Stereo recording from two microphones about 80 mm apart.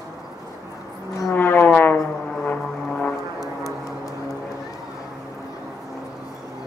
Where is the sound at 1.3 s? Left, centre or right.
Left.